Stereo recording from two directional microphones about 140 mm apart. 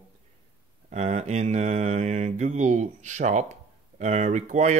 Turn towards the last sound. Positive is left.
turn(degrees=-60)  # may be behind; listen again after turning